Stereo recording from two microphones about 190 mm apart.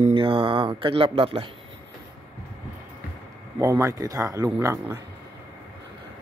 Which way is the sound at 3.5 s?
15° right (ahead or behind).